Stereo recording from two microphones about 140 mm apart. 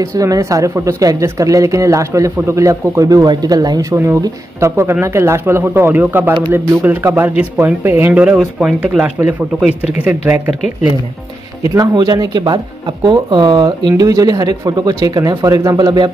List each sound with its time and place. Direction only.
0.0 s speech: 25° right (ahead or behind)
11.6 s speech: 25° right (ahead or behind)